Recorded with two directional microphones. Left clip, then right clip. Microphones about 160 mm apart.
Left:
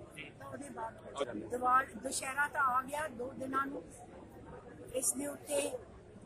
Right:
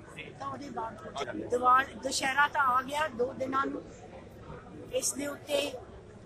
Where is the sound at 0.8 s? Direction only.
5° right (ahead or behind).